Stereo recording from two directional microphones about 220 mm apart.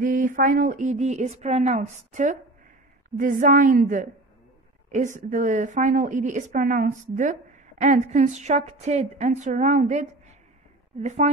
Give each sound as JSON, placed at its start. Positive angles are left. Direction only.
{"t": 0.0, "sound": "a woman's voice", "side_deg": -40}